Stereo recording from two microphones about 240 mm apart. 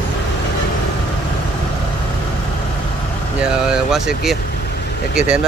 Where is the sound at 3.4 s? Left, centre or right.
Centre.